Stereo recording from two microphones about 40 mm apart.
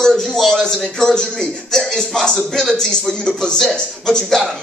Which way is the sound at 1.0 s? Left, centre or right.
Centre.